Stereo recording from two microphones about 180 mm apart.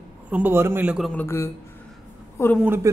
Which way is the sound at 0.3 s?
10° right (ahead or behind).